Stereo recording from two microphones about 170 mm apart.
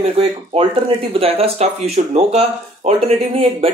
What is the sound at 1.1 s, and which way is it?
Speech, 35° right (ahead or behind).